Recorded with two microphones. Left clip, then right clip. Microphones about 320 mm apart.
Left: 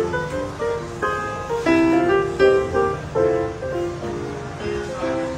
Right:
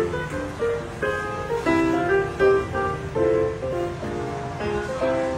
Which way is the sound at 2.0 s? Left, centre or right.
Left.